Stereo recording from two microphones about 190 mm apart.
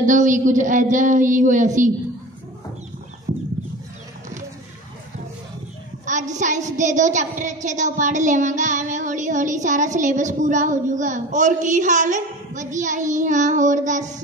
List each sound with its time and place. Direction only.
0.0 s a woman's voice: 40° right (ahead or behind)
6.0 s a woman's voice: 40° right (ahead or behind)